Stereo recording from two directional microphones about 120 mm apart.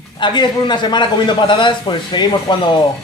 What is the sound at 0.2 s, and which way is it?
A man's voice, 40° left (ahead or behind).